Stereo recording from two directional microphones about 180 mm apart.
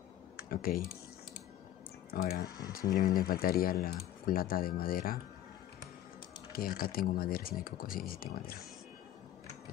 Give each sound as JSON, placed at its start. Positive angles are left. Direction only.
{"t": 0.5, "sound": "speech", "side_deg": 55}
{"t": 2.0, "sound": "speech", "side_deg": 55}
{"t": 6.5, "sound": "speech", "side_deg": 55}